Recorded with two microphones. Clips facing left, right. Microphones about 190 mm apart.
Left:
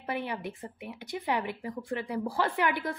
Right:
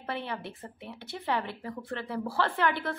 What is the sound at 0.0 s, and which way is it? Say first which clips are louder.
Speech: left 2 dB; 15° left (ahead or behind).